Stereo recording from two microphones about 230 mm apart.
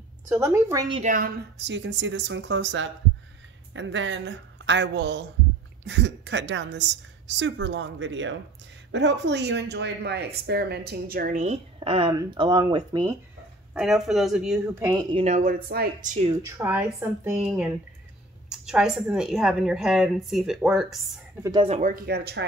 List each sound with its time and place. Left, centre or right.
0.3 s speech: centre
1.0 s a woman's voice: right; by 13.1 s centre
13.7 s a woman's voice: centre
15.1 s speech: right
16.4 s a woman's voice: centre
21.4 s speech: centre; by 22.4 s right